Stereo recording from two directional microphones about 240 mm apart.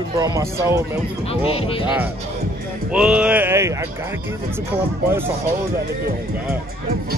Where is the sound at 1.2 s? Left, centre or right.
Left.